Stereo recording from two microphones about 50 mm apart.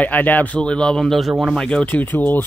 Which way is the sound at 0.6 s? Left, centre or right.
Centre.